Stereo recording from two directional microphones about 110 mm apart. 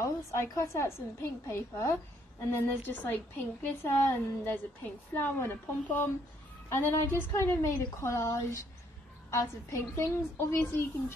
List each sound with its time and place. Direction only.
0.0 s a woman's voice: 30° left (ahead or behind)
2.5 s a woman's voice: 20° left (ahead or behind)